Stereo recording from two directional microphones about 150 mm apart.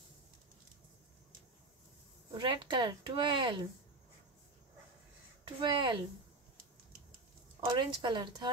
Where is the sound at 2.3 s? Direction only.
35° right (ahead or behind).